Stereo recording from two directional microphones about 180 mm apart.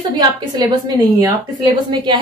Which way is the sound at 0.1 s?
20° right (ahead or behind).